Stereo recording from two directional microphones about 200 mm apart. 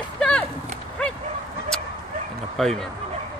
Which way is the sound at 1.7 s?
5° left (ahead or behind).